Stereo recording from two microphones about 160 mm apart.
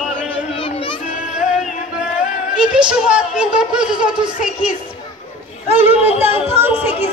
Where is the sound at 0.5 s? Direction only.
35° left (ahead or behind).